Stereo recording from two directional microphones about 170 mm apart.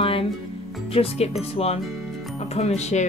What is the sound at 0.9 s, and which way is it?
A woman's voice, 35° left (ahead or behind).